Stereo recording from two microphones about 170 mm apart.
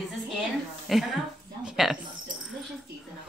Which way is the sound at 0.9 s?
Centre (ahead or behind).